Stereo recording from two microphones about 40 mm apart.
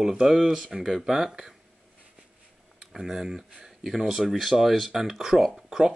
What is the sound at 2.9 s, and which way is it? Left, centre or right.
Speech, centre.